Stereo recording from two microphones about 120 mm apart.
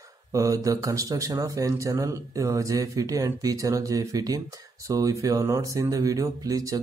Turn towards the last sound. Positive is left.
turn(degrees=-30)  # may be behind; listen again after turning